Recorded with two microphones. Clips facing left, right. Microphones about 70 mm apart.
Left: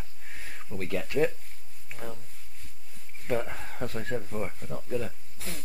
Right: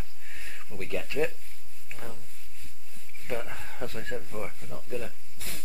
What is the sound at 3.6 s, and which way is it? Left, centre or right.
Speech, left.